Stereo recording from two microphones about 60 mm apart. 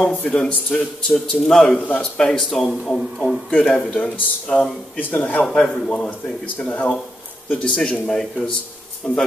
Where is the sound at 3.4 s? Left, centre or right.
Centre.